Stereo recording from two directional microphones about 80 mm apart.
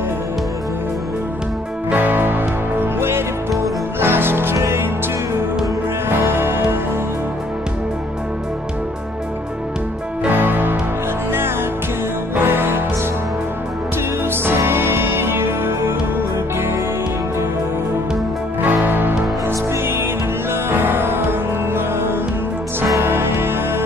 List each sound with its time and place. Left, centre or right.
1.9 s music: right
6.0 s music: right
10.2 s music: right
12.4 s music: right
14.3 s music: right
18.6 s music: right
20.7 s music: right